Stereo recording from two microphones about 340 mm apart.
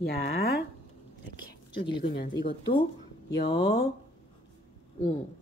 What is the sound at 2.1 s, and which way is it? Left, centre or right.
Speech, left.